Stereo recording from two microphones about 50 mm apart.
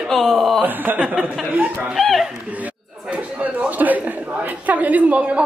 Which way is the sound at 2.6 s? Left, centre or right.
Right.